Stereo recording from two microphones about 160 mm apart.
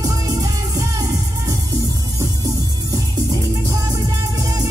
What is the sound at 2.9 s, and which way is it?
Music, 25° right (ahead or behind).